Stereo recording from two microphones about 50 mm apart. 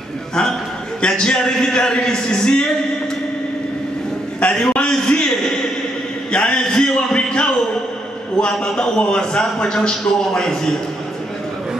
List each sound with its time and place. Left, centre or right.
1.0 s a man's voice: centre
4.4 s a sound: centre
8.4 s a man's voice: centre